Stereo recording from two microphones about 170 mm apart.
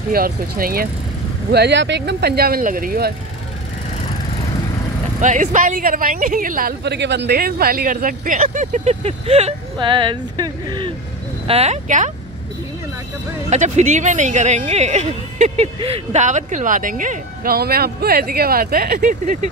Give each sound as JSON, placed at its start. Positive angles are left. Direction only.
{"t": 0.1, "sound": "speech", "side_deg": -60}
{"t": 1.5, "sound": "speech", "side_deg": -80}
{"t": 5.2, "sound": "speech", "side_deg": -45}
{"t": 6.8, "sound": "speech", "side_deg": -80}
{"t": 11.4, "sound": "speech", "side_deg": -35}
{"t": 13.5, "sound": "speech", "side_deg": -45}